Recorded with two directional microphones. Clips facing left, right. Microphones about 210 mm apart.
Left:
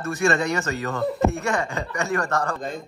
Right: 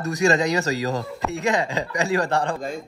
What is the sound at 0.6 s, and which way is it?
Speech, 35° right (ahead or behind).